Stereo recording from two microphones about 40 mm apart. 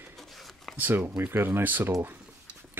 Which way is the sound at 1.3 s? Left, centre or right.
Right.